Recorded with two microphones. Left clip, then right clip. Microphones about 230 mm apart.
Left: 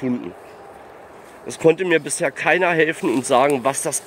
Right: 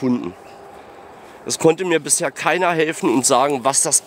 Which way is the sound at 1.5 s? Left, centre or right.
Right.